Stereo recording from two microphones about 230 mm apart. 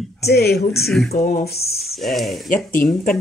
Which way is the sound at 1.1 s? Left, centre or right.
Left.